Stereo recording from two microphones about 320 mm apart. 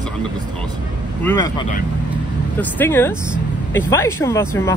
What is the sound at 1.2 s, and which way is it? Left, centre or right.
Speech, centre.